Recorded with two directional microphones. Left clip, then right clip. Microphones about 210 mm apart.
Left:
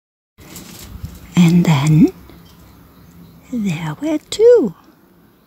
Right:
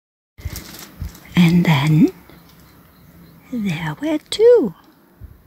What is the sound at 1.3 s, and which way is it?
Whispering, 5° left (ahead or behind).